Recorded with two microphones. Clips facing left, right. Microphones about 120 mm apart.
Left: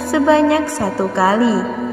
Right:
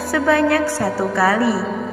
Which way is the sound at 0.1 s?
25° left (ahead or behind).